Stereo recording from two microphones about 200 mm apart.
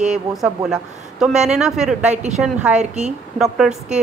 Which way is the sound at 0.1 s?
Centre (ahead or behind).